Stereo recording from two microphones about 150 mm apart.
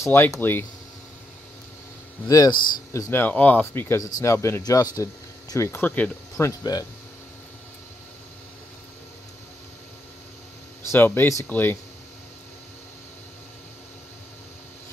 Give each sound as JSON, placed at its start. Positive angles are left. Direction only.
{"t": 0.0, "sound": "speech", "side_deg": 15}
{"t": 2.2, "sound": "speech", "side_deg": 25}
{"t": 10.9, "sound": "speech", "side_deg": 15}